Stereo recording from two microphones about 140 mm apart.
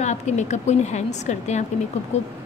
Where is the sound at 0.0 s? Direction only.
55° left (ahead or behind).